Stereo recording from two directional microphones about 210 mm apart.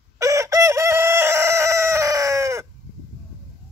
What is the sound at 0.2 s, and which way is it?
Chicken, 15° right (ahead or behind).